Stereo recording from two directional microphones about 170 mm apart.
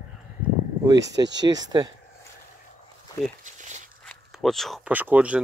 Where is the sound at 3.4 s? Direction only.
45° right (ahead or behind).